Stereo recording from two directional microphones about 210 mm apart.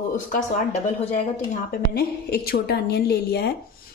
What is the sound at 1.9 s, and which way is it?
A woman's voice, 45° left (ahead or behind).